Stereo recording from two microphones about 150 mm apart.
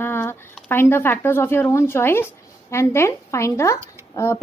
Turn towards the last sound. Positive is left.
turn(degrees=20)  # may be behind; listen again after turning